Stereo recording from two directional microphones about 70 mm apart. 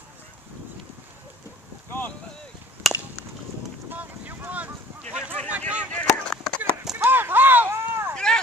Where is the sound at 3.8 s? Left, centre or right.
Right.